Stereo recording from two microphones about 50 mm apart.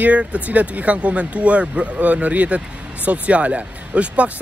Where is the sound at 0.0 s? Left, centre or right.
Right.